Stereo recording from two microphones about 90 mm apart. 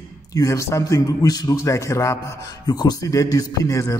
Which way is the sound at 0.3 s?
40° left (ahead or behind).